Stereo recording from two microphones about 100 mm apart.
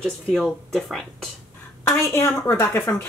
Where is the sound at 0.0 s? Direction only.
Centre (ahead or behind).